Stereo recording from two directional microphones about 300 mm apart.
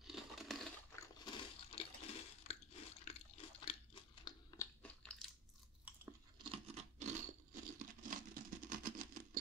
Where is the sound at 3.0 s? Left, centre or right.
Centre.